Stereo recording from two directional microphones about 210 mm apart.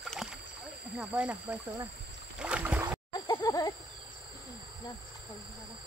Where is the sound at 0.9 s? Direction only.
5° right (ahead or behind).